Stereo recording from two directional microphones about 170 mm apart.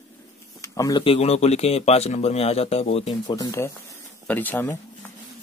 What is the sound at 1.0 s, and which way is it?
Speech, 35° left (ahead or behind).